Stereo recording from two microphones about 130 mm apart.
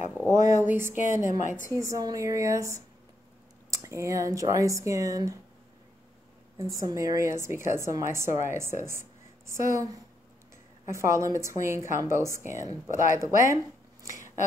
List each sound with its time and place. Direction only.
0.3 s a woman's voice: 25° right (ahead or behind)
0.9 s a woman's voice: 80° left
1.8 s a woman's voice: 25° right (ahead or behind)
6.6 s a woman's voice: 25° right (ahead or behind)